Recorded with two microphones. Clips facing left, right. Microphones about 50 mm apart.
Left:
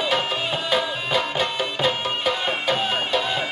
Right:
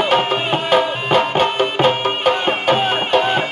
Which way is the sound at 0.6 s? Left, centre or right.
Right.